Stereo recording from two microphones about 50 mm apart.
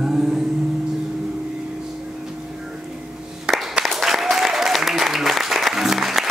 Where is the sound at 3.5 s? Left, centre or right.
Centre.